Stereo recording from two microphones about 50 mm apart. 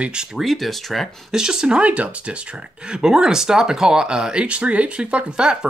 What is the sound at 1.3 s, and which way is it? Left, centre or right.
Speech, centre.